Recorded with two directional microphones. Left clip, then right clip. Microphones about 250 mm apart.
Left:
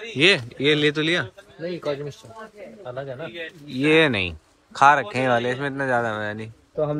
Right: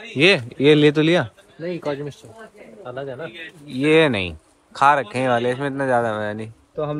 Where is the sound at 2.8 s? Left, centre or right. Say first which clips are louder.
Right 2 dB; right.